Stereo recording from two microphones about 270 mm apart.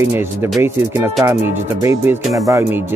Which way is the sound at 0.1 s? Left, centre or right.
Centre.